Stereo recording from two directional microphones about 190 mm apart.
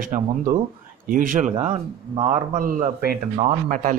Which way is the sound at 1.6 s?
30° right (ahead or behind).